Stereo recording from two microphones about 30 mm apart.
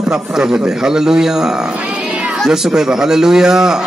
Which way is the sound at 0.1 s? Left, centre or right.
Right.